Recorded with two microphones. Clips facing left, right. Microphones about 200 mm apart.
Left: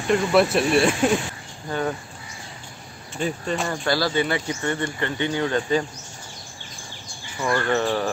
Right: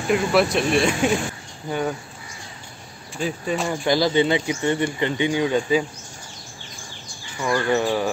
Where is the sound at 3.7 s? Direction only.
15° right (ahead or behind).